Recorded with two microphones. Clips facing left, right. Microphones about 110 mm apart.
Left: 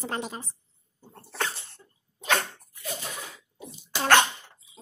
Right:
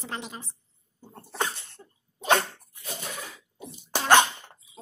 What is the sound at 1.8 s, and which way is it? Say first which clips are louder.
Sneeze: right 5 dB; 35° right (ahead or behind).